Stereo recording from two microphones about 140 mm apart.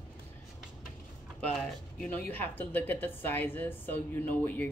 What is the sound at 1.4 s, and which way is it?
A woman's voice, 5° left (ahead or behind).